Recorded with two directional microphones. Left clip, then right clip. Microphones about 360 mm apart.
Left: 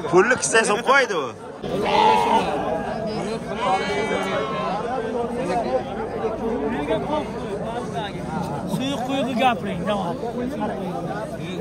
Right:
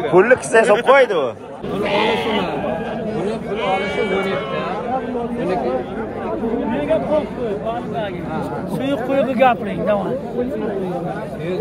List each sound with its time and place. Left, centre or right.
0.1 s a man's voice: centre
8.8 s a man's voice: left